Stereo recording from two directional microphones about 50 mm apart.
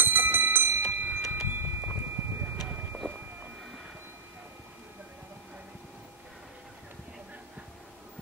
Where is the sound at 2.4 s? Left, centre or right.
Right.